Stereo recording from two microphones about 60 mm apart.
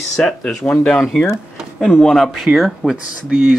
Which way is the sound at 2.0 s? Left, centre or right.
Centre.